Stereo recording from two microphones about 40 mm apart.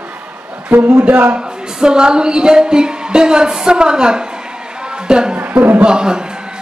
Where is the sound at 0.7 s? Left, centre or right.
Right.